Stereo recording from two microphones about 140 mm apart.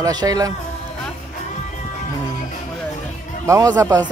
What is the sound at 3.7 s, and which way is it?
Speech, 25° right (ahead or behind).